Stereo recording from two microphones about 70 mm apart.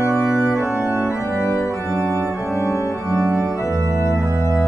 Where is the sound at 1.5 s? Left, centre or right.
Left.